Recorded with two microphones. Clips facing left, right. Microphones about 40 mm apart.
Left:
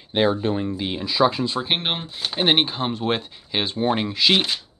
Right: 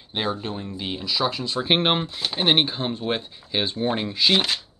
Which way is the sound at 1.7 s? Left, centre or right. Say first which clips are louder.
Right 4 dB; centre.